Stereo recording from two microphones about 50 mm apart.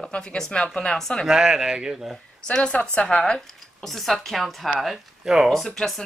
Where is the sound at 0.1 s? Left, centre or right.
Left.